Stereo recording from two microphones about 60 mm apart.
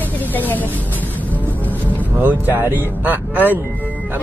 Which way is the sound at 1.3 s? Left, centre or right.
Left.